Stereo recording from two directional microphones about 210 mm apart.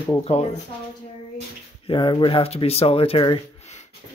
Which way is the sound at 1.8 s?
25° left (ahead or behind).